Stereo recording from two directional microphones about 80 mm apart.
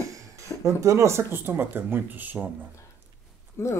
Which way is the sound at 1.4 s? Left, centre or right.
Right.